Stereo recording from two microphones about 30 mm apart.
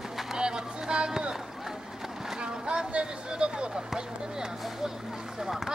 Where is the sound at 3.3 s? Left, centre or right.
Right.